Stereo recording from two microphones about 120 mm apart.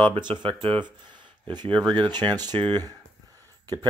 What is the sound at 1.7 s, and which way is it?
Speech, 10° left (ahead or behind).